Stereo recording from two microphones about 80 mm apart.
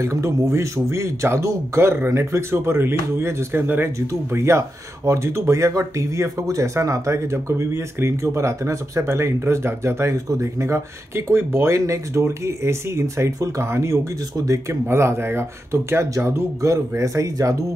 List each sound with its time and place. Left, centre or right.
0.0 s speech: right
4.1 s speech: right
14.9 s speech: right